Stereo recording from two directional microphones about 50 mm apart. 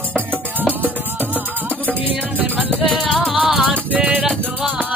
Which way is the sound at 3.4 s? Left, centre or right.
Centre.